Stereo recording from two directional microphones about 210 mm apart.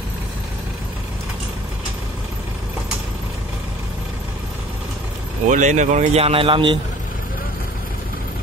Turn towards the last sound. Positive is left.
turn(degrees=-25)  # may be behind; listen again after turning